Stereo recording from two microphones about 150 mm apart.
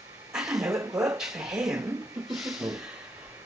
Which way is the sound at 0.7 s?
20° right (ahead or behind).